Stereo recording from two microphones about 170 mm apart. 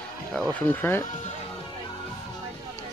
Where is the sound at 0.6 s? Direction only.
10° left (ahead or behind).